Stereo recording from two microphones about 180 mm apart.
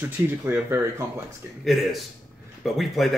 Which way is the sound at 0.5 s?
15° right (ahead or behind).